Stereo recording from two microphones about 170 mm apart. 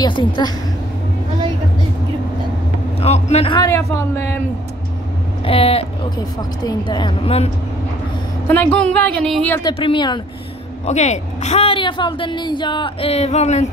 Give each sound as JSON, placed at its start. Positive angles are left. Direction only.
{"t": 0.0, "sound": "a woman's voice", "side_deg": 25}
{"t": 3.0, "sound": "speech", "side_deg": 40}
{"t": 3.5, "sound": "a woman's voice", "side_deg": 20}
{"t": 5.4, "sound": "a woman's voice", "side_deg": 35}
{"t": 6.1, "sound": "a woman's voice", "side_deg": 25}
{"t": 8.5, "sound": "speech", "side_deg": 10}
{"t": 9.6, "sound": "a woman's voice", "side_deg": 30}
{"t": 10.9, "sound": "a woman's voice", "side_deg": 40}